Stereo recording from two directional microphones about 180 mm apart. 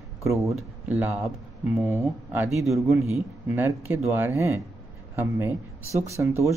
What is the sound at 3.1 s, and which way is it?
Speech, 10° right (ahead or behind).